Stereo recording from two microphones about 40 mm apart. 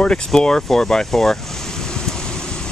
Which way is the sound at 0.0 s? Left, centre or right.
Left.